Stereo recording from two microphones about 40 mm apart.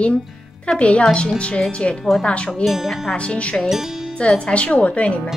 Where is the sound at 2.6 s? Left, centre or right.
Centre.